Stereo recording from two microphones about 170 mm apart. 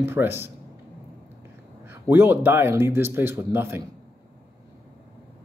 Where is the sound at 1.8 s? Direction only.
15° right (ahead or behind).